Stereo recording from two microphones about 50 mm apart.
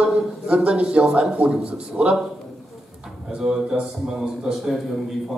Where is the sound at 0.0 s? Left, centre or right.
Right.